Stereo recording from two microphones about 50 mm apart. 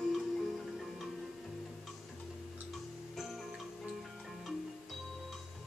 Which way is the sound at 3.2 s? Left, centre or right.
Centre.